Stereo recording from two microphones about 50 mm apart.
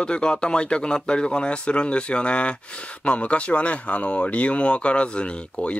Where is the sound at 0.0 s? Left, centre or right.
Centre.